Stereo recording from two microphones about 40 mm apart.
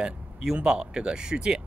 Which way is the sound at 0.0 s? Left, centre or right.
Centre.